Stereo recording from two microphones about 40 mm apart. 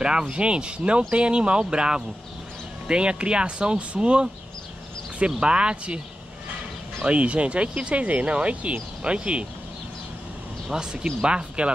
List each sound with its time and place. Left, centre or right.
0.0 s speech: right
5.4 s speech: right
7.1 s speech: right
10.7 s speech: centre